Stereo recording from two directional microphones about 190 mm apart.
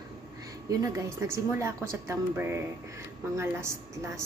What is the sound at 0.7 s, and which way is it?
A woman's voice, 15° right (ahead or behind).